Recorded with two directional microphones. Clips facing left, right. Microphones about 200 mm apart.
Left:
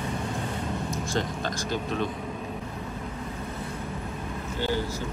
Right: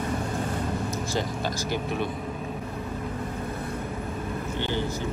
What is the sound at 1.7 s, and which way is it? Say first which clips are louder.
Speech: left 1 dB; 10° right (ahead or behind).